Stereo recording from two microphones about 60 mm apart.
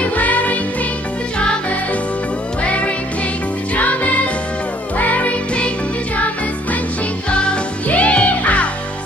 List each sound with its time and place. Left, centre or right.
0.0 s music: left
2.6 s music: left
7.2 s music: centre